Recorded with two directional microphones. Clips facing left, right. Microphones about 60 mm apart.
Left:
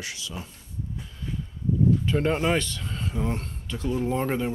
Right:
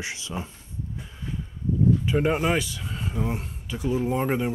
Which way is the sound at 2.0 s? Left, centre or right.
Centre.